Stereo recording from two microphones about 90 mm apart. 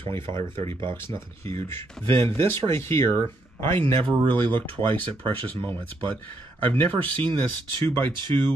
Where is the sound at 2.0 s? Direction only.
30° left (ahead or behind).